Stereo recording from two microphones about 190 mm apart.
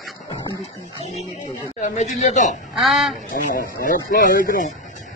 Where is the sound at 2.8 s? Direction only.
Centre (ahead or behind).